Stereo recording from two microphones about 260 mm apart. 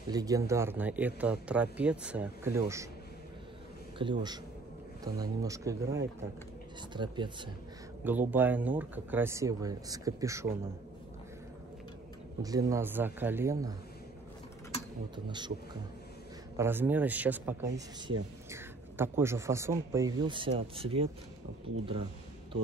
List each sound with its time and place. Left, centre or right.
0.1 s speech: centre
4.0 s speech: centre
8.0 s speech: centre
12.4 s speech: centre
15.1 s speech: centre